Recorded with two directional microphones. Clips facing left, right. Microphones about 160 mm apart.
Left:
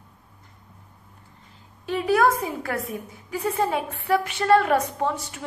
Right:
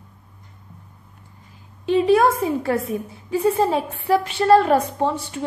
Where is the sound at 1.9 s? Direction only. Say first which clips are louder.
Right 5 dB; 25° right (ahead or behind).